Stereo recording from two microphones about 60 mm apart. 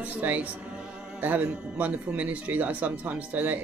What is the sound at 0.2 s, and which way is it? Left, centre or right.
Speech, right.